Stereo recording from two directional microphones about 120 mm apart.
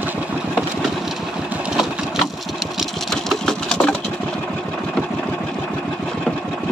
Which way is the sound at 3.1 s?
5° left (ahead or behind).